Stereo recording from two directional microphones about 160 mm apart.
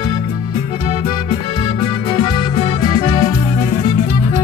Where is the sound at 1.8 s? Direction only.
30° left (ahead or behind).